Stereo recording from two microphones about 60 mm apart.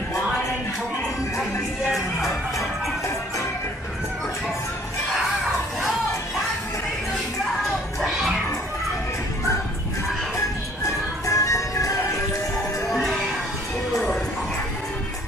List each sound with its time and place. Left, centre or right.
8.0 s music: centre
10.3 s music: left
13.9 s music: centre